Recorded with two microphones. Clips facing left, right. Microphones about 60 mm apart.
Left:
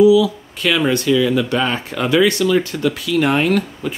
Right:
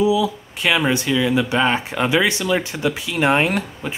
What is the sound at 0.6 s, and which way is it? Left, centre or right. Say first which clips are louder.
Speech: left 2 dB; centre.